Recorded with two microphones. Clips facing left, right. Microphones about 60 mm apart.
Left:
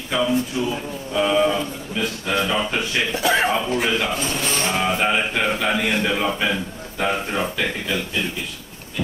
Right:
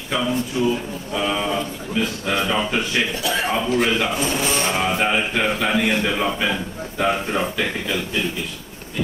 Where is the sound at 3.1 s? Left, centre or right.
Left.